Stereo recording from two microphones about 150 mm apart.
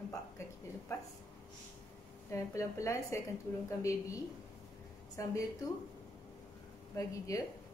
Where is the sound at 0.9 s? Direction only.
20° left (ahead or behind).